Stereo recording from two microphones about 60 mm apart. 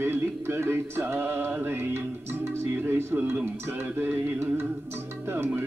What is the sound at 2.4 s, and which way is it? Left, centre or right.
Speech, right.